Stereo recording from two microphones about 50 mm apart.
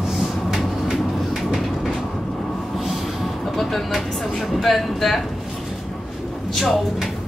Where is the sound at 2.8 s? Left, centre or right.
Centre.